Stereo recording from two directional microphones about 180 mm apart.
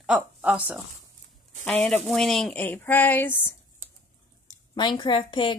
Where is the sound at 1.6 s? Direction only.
5° left (ahead or behind).